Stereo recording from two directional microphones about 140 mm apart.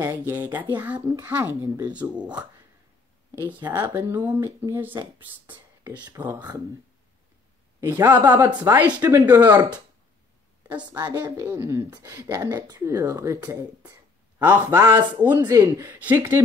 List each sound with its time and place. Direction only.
0.3 s speech: 15° right (ahead or behind)
3.7 s speech: 15° right (ahead or behind)
6.0 s a woman's voice: 25° right (ahead or behind)
7.8 s speech: 15° right (ahead or behind)
8.8 s a woman's voice: 25° right (ahead or behind)
9.3 s speech: 15° right (ahead or behind)
10.9 s a woman's voice: 30° right (ahead or behind); by 16.3 s 15° right (ahead or behind)